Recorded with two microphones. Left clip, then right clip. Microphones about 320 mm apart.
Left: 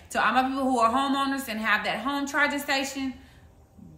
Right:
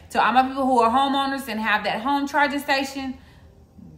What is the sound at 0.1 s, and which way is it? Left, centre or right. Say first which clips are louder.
A woman's voice: right 5 dB; centre.